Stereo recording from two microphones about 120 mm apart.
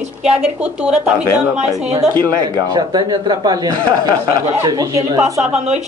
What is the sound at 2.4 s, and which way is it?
A man's voice, 35° right (ahead or behind).